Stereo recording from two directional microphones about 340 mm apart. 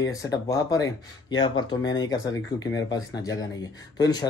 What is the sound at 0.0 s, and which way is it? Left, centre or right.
Speech, centre.